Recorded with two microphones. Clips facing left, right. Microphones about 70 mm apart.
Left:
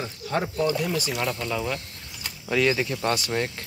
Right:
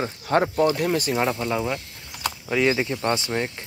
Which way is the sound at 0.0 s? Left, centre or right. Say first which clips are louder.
Right 6 dB; right.